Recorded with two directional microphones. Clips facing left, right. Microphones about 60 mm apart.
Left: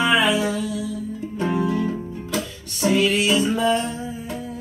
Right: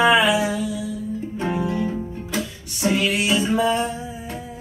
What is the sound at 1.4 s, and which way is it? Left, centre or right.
Music, centre.